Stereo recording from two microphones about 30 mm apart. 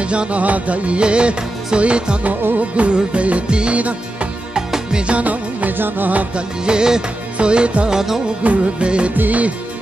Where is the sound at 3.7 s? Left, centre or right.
Right.